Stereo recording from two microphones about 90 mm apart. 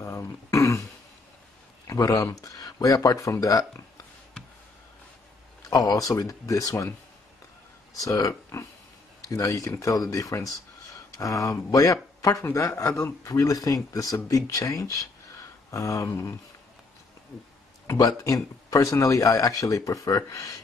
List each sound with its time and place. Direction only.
0.0 s throat clearing: 35° left (ahead or behind)
1.9 s speech: 40° left (ahead or behind)
5.7 s speech: 40° left (ahead or behind)
8.0 s speech: 40° left (ahead or behind)
18.1 s speech: 40° left (ahead or behind)